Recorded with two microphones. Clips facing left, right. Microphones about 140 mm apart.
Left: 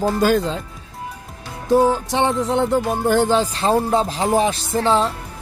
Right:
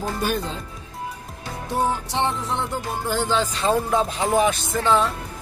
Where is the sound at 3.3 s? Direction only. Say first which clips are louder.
Left 4 dB; 35° left (ahead or behind).